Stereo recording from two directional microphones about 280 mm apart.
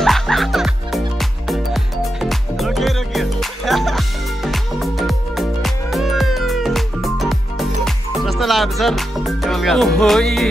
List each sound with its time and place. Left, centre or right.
0.0 s music: centre
2.2 s music: centre